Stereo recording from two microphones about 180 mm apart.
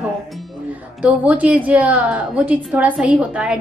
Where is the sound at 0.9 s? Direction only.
5° right (ahead or behind).